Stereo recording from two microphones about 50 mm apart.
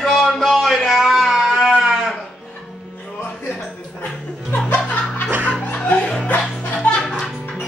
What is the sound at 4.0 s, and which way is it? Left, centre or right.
Music, left.